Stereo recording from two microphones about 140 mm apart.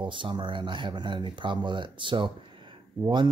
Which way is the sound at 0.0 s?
35° right (ahead or behind).